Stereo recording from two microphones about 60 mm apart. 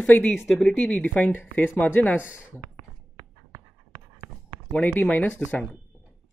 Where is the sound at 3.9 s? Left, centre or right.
Right.